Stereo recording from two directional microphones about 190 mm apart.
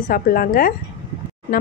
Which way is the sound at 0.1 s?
50° left (ahead or behind).